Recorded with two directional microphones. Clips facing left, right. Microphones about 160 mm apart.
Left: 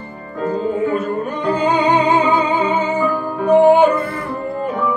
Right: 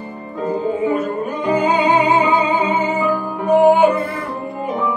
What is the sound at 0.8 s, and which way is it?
Music, 10° right (ahead or behind).